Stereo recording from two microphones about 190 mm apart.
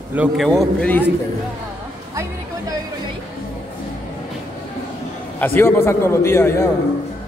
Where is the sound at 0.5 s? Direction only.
5° left (ahead or behind).